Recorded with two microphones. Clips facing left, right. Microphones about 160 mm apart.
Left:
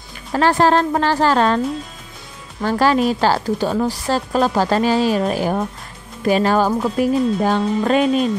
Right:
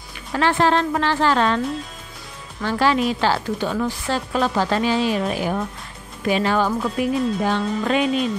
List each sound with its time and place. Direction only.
0.3 s a woman's voice: 40° left (ahead or behind)
2.6 s a woman's voice: 40° left (ahead or behind)